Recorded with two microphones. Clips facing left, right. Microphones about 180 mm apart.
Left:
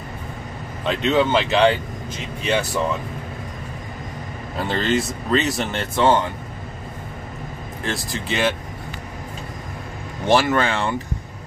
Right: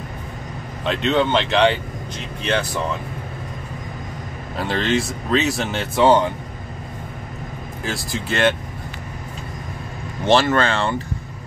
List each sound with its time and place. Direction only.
0.8 s speech: centre (ahead or behind)
4.6 s speech: centre (ahead or behind)
5.9 s speech: 15° right (ahead or behind)
7.8 s speech: centre (ahead or behind)
10.2 s speech: 15° left (ahead or behind)